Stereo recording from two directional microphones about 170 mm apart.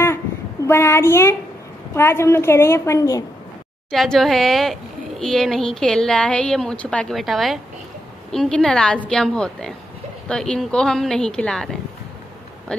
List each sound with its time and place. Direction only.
0.7 s a child's voice: 15° left (ahead or behind)
3.9 s a woman's voice: centre (ahead or behind)